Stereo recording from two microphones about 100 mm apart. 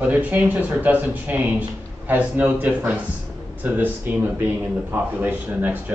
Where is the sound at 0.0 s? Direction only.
15° right (ahead or behind).